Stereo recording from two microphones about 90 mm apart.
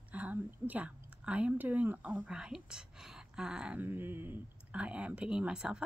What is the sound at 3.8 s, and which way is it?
Speech, 25° right (ahead or behind).